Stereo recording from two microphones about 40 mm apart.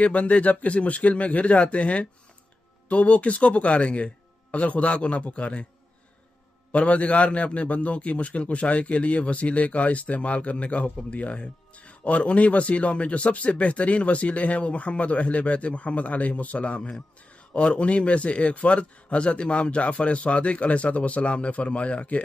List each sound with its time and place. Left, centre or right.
0.0 s speech: left
6.7 s speech: left